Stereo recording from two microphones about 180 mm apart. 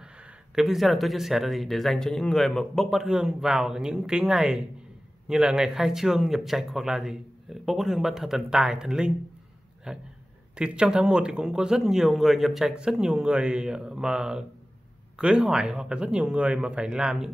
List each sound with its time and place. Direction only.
0.0 s speech: 5° right (ahead or behind)